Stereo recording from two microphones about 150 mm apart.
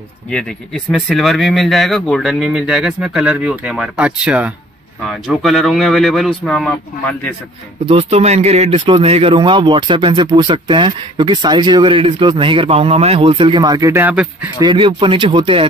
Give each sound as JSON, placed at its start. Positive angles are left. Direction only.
{"t": 0.3, "sound": "speech", "side_deg": 5}
{"t": 7.9, "sound": "a man's voice", "side_deg": -45}
{"t": 14.6, "sound": "a man's voice", "side_deg": -35}